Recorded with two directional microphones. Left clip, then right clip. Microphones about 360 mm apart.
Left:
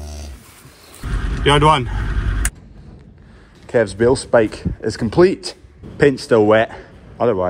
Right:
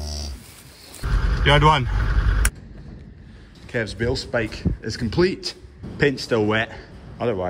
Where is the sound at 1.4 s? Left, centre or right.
Centre.